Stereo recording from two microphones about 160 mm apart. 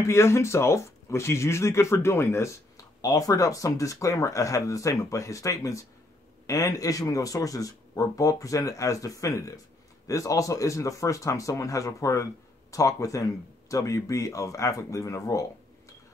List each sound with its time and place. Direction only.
0.0 s speech: 15° left (ahead or behind)